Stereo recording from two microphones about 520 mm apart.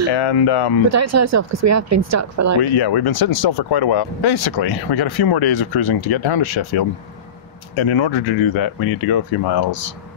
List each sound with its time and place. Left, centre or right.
0.1 s speech: left
0.9 s speech: right
2.6 s speech: left
7.8 s speech: left